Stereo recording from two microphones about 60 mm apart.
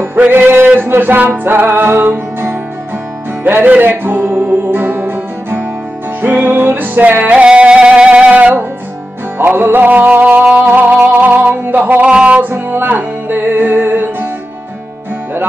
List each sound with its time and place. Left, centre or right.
0.3 s music: right
7.3 s music: centre; by 12.0 s right
12.0 s music: centre
12.4 s music: right